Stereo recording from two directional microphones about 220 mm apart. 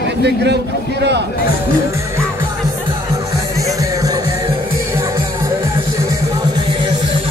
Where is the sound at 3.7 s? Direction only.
15° right (ahead or behind).